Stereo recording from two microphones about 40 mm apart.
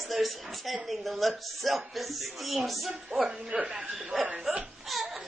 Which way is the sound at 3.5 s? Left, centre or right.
Right.